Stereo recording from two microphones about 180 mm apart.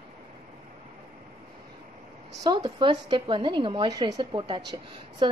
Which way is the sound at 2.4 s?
25° right (ahead or behind).